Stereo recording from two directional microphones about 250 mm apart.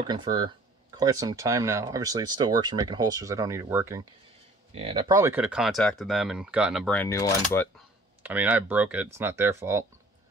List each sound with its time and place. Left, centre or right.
0.1 s speech: centre
4.7 s speech: right; by 7.7 s centre
8.2 s speech: centre